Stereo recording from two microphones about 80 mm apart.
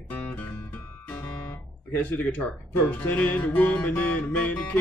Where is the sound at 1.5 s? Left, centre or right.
Left.